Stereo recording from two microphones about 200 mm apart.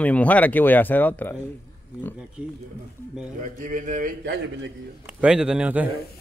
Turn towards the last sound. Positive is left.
turn(degrees=-5)  # may be behind; listen again after turning